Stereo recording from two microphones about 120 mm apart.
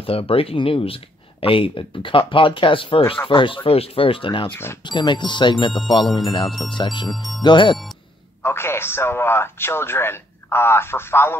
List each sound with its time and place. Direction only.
0.0 s speech: 50° left (ahead or behind)
4.5 s speech: 20° left (ahead or behind)
4.8 s speech: 40° left (ahead or behind)
6.5 s speech: centre (ahead or behind)
6.8 s speech: 40° left (ahead or behind)
7.1 s speech: centre (ahead or behind)
7.4 s speech: 40° left (ahead or behind)
8.4 s speech: 20° left (ahead or behind)